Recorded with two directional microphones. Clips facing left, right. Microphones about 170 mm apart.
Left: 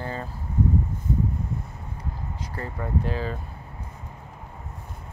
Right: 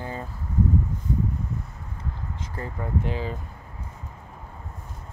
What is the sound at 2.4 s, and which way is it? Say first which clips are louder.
Speech: left 1 dB; 20° right (ahead or behind).